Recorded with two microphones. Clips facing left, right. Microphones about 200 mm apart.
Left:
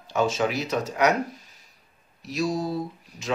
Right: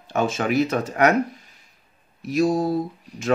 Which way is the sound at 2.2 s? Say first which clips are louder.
Right 6 dB; 50° right (ahead or behind).